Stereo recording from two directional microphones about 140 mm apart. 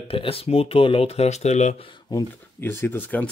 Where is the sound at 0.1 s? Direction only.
40° left (ahead or behind).